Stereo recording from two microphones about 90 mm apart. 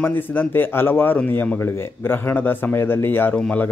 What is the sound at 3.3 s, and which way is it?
Speech, 15° left (ahead or behind).